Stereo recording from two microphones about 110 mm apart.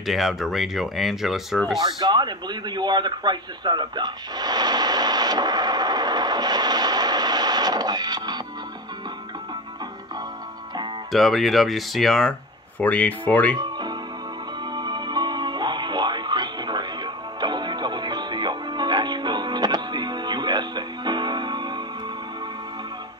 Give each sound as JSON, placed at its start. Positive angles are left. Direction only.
{"t": 0.0, "sound": "speech", "side_deg": 0}
{"t": 1.8, "sound": "speech", "side_deg": -40}
{"t": 11.1, "sound": "speech", "side_deg": 0}
{"t": 12.7, "sound": "speech", "side_deg": 15}
{"t": 13.6, "sound": "music", "side_deg": -40}